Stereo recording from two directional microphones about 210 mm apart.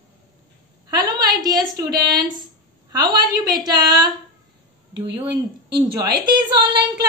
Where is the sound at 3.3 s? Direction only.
20° right (ahead or behind).